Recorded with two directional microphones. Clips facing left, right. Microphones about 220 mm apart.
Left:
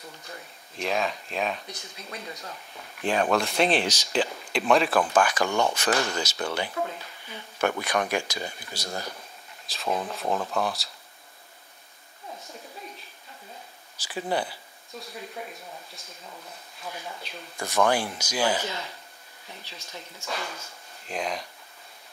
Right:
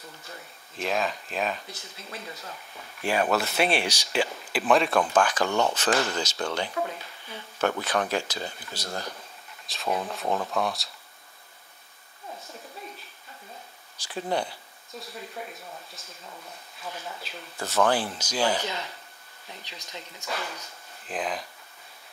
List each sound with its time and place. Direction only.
0.7 s speech: centre (ahead or behind)
3.0 s speech: 10° right (ahead or behind); by 9.1 s 10° left (ahead or behind)
9.7 s speech: centre (ahead or behind)
13.9 s speech: 5° left (ahead or behind)
17.2 s speech: 5° right (ahead or behind)
17.6 s speech: 10° left (ahead or behind)
19.6 s speech: 15° right (ahead or behind)
21.0 s speech: centre (ahead or behind)